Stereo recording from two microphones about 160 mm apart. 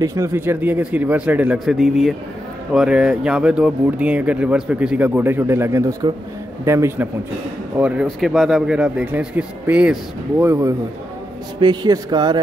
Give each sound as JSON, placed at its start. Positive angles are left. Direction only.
{"t": 0.0, "sound": "speech", "side_deg": -20}
{"t": 10.4, "sound": "speech", "side_deg": -20}
{"t": 11.6, "sound": "a man's voice", "side_deg": -30}